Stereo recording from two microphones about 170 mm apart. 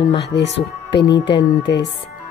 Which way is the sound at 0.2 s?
90° left.